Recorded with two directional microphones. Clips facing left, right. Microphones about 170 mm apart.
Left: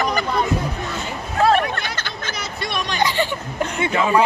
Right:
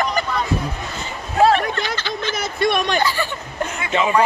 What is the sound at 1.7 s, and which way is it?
Speech, 50° left (ahead or behind).